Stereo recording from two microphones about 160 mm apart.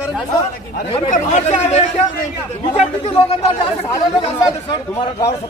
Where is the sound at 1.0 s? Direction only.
50° left (ahead or behind).